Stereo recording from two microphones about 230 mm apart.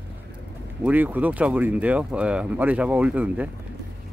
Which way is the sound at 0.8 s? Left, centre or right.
Centre.